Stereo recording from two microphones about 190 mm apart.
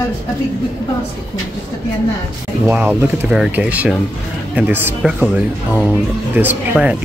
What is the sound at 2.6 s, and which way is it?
Speech, 10° right (ahead or behind).